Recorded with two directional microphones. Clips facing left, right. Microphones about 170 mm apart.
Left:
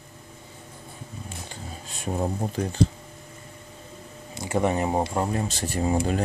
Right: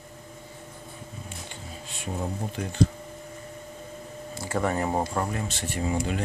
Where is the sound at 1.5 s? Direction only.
40° left (ahead or behind).